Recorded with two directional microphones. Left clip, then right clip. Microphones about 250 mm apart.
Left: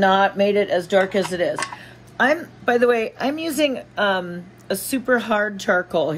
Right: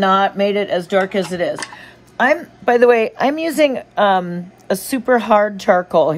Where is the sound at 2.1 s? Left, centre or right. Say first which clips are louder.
Right 4 dB; right.